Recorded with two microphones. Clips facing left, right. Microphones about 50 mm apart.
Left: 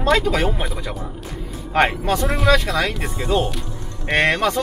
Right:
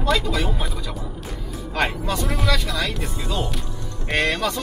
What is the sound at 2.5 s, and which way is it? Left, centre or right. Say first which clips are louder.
Speech: left 8 dB; left.